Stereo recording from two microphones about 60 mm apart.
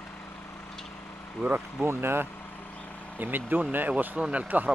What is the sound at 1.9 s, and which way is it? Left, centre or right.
Speech, right.